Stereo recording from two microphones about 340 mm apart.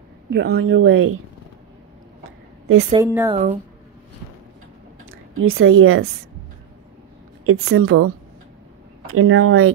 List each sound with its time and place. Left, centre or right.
0.3 s speech: right
2.9 s speech: centre
5.4 s speech: right
7.4 s speech: right